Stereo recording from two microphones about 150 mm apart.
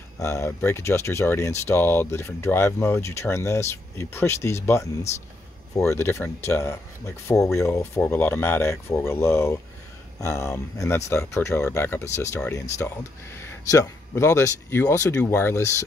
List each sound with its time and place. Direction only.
0.2 s speech: 20° left (ahead or behind)